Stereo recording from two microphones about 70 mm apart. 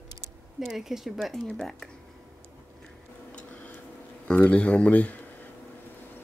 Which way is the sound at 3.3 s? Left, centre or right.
Left.